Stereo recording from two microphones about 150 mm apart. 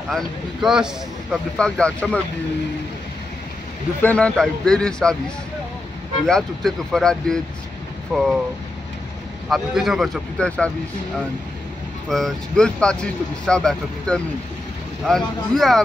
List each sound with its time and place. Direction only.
0.1 s speech: 5° right (ahead or behind)
4.0 s speech: 10° left (ahead or behind)
6.2 s speech: 5° left (ahead or behind)
9.5 s speech: centre (ahead or behind)
12.1 s speech: centre (ahead or behind)